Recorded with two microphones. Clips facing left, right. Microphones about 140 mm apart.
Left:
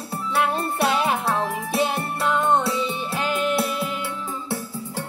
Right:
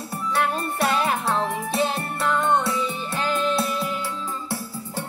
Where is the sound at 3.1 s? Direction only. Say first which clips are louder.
Right 1 dB; 15° left (ahead or behind).